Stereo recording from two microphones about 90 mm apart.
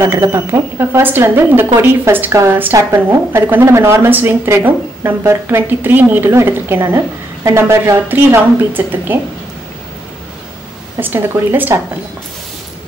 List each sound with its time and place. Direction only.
0.0 s a woman's voice: 35° right (ahead or behind)
11.0 s a woman's voice: 25° right (ahead or behind)